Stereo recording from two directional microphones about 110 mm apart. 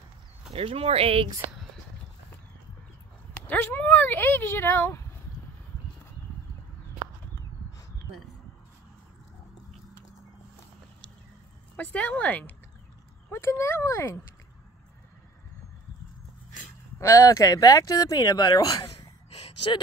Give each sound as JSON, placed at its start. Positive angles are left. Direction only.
{"t": 0.5, "sound": "speech", "side_deg": -60}
{"t": 3.4, "sound": "speech", "side_deg": 20}
{"t": 11.7, "sound": "speech", "side_deg": 10}
{"t": 13.3, "sound": "speech", "side_deg": 25}
{"t": 17.0, "sound": "speech", "side_deg": 30}
{"t": 18.9, "sound": "gasp", "side_deg": 65}